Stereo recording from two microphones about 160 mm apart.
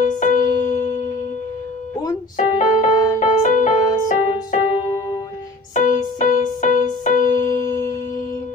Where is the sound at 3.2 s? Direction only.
50° left (ahead or behind).